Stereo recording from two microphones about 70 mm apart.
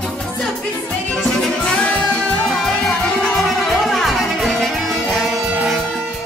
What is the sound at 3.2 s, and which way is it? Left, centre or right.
Music, centre.